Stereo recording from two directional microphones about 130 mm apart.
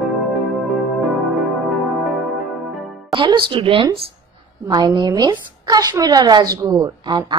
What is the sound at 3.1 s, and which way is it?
A woman's voice, 40° right (ahead or behind).